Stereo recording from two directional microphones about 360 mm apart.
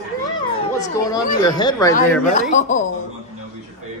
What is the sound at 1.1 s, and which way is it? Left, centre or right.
Speech, centre.